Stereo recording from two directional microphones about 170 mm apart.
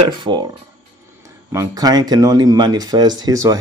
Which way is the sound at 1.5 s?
20° right (ahead or behind).